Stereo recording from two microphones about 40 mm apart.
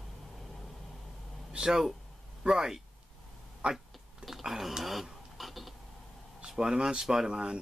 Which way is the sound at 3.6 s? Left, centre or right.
Right.